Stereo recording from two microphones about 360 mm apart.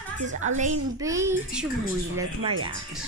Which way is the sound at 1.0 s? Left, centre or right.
Centre.